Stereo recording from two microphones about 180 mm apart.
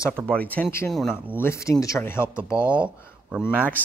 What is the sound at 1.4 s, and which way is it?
Speech, 15° left (ahead or behind).